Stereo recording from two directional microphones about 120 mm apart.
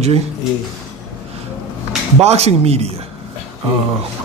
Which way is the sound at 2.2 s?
60° right (ahead or behind).